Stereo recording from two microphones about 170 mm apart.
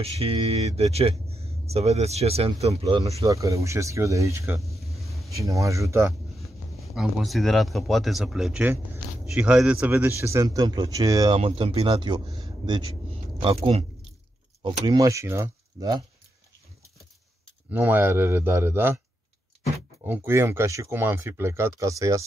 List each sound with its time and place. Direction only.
0.0 s speech: 35° right (ahead or behind)
3.2 s speech: 20° right (ahead or behind)
4.9 s a sound: centre (ahead or behind)
5.3 s speech: 20° right (ahead or behind)
7.0 s speech: centre (ahead or behind); by 11.3 s 20° right (ahead or behind)
11.3 s speech: 35° right (ahead or behind)
17.6 s speech: 10° right (ahead or behind)
20.1 s speech: 15° right (ahead or behind)